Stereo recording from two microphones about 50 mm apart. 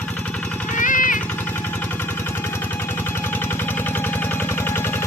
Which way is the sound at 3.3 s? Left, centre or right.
Left.